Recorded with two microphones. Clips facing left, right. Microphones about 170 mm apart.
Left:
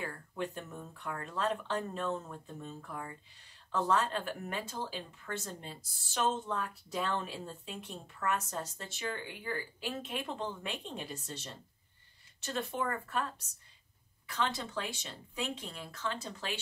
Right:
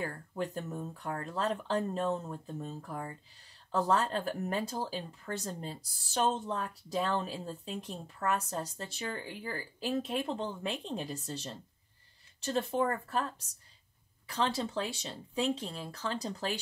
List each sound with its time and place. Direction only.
0.0 s speech: 40° right (ahead or behind)
14.2 s speech: 35° right (ahead or behind)